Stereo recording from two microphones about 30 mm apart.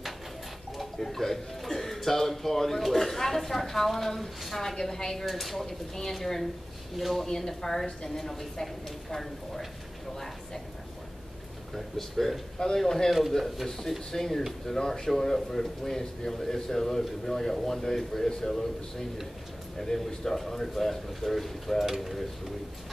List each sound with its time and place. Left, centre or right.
0.7 s a man's voice: centre
5.2 s a man's voice: centre
7.2 s a man's voice: centre
11.7 s a man's voice: centre
12.5 s a man's voice: left
14.1 s a man's voice: centre
19.8 s a man's voice: centre
21.8 s speech: centre